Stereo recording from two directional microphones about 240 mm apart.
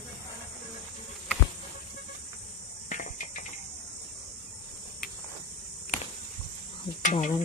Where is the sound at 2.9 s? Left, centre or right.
Left.